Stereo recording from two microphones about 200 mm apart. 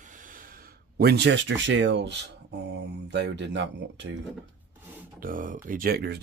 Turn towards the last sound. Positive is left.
turn(degrees=-50)  # may be behind; listen again after turning